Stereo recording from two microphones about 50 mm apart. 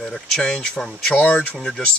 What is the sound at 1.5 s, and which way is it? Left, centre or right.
Speech, centre.